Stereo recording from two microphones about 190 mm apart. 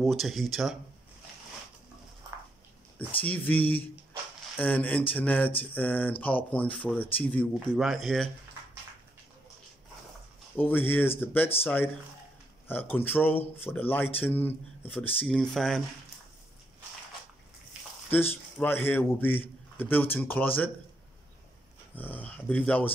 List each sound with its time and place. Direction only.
0.0 s speech: centre (ahead or behind)
3.3 s a man's voice: 10° left (ahead or behind)
10.5 s a man's voice: 10° left (ahead or behind)
18.1 s a man's voice: 10° left (ahead or behind)
21.9 s a man's voice: 10° left (ahead or behind)